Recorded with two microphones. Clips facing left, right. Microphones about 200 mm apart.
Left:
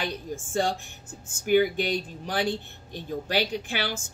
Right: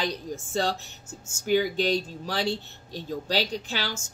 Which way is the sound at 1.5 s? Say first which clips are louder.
Left 3 dB; 55° left (ahead or behind).